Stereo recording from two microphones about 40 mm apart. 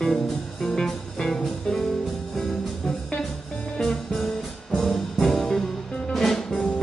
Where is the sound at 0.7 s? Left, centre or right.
Centre.